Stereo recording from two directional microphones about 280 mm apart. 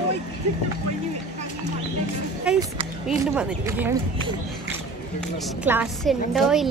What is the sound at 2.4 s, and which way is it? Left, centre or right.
Speech, centre.